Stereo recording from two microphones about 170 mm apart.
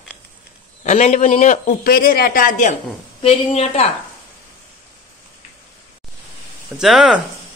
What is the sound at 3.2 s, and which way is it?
Speech, 35° left (ahead or behind).